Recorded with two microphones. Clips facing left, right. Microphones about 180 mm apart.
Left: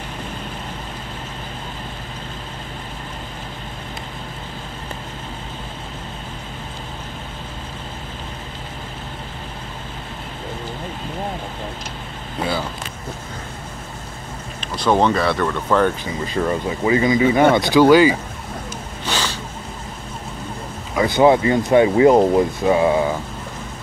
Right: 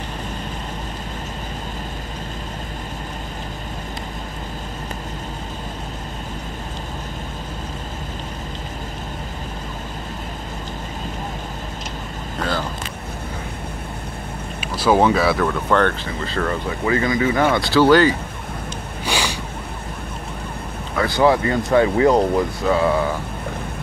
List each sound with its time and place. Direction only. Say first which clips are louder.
12.4 s vehicle: left 1 dB; 10° left (ahead or behind)
14.6 s speech: right 1 dB; 5° right (ahead or behind)
16.3 s speech: left 3 dB; 15° left (ahead or behind)
19.0 s a sound: right 1 dB; 10° right (ahead or behind)
20.9 s speech: left 3 dB; 15° left (ahead or behind)